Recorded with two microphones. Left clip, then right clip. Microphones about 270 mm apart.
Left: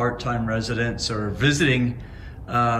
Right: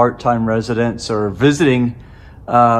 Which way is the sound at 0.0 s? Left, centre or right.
Centre.